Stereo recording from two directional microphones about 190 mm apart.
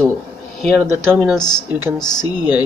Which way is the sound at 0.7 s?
10° right (ahead or behind).